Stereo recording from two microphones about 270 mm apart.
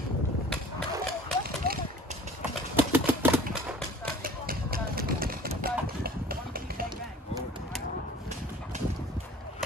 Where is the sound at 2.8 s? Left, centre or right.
Centre.